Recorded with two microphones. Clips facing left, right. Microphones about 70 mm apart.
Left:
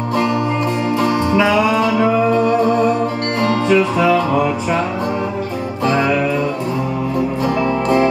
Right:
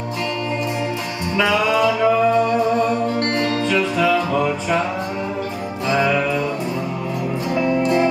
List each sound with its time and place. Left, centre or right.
1.3 s music: centre
3.6 s music: centre